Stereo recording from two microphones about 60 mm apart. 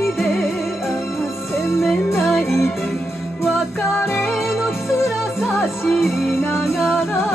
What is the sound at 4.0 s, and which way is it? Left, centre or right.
Music, left.